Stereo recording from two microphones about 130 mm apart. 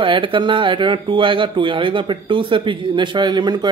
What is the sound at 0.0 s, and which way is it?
A man's voice, 40° right (ahead or behind).